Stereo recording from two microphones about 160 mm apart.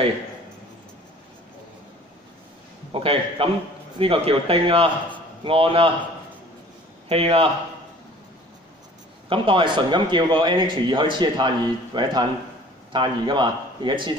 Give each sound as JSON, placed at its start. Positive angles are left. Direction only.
{"t": 2.9, "sound": "speech", "side_deg": -35}
{"t": 7.1, "sound": "speech", "side_deg": -35}
{"t": 9.3, "sound": "speech", "side_deg": -30}